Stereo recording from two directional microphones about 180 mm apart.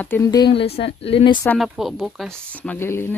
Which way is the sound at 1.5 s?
Centre (ahead or behind).